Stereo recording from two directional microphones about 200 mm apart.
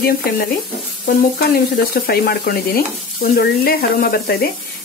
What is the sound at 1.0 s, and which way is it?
Speech, 50° left (ahead or behind).